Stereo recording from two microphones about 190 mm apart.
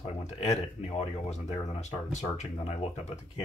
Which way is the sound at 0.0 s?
35° left (ahead or behind).